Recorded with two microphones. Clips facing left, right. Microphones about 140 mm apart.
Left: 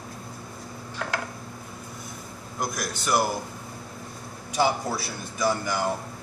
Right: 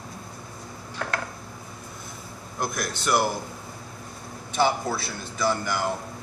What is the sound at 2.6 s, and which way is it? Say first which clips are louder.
Speech: right 1 dB; 15° left (ahead or behind).